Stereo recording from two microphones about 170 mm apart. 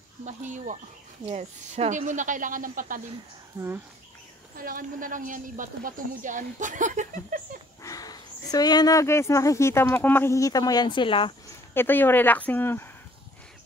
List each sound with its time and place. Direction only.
0.2 s speech: 45° right (ahead or behind)
3.6 s speech: 10° right (ahead or behind)
4.6 s speech: 55° right (ahead or behind)
7.8 s speech: 20° left (ahead or behind)
11.7 s speech: 10° left (ahead or behind)